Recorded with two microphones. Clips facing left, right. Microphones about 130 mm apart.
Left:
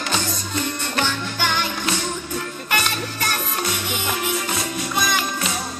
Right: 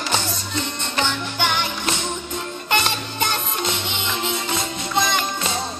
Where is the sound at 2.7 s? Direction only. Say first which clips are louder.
Right 2 dB; 25° right (ahead or behind).